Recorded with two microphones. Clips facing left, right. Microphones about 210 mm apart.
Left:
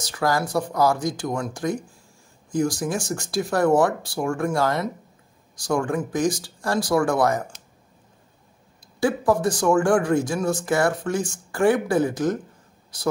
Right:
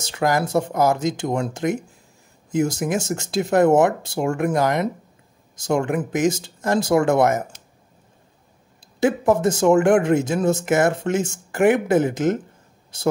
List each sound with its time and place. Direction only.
0.0 s speech: 25° right (ahead or behind)
9.0 s speech: 20° right (ahead or behind)